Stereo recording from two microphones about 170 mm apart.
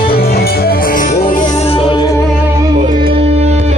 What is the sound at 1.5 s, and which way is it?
Music, 35° left (ahead or behind).